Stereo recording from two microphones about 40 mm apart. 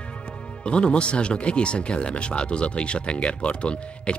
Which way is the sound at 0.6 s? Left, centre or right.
Left.